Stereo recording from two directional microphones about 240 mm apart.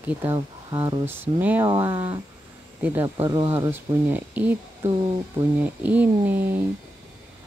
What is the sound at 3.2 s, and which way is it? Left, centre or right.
Speech, right.